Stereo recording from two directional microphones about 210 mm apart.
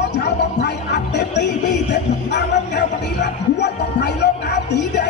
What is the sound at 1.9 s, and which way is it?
Music, 55° left (ahead or behind).